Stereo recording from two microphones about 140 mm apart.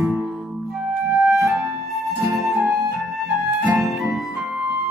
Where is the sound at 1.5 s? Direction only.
Centre (ahead or behind).